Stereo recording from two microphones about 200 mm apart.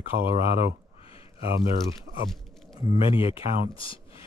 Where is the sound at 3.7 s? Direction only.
25° left (ahead or behind).